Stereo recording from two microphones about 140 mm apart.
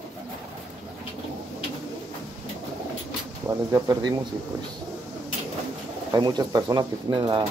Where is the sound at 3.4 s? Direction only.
25° right (ahead or behind).